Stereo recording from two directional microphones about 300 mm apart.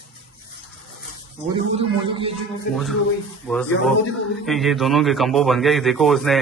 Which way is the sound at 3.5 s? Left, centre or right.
Centre.